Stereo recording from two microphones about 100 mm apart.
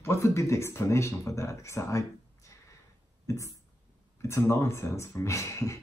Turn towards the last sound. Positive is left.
turn(degrees=30)  # may be behind; listen again after turning